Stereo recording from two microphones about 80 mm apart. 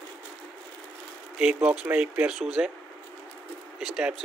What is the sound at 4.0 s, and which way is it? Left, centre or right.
Speech, centre.